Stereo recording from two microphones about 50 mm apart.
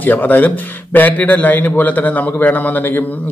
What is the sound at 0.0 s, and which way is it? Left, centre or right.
Speech, left.